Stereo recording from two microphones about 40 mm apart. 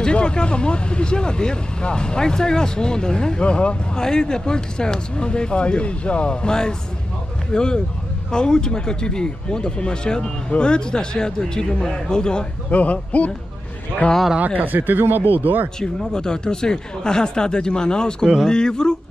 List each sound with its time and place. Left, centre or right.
0.0 s speech: left
12.7 s speech: left
14.6 s speech: right
16.1 s speech: centre